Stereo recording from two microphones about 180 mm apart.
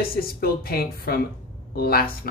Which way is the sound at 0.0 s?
55° left (ahead or behind).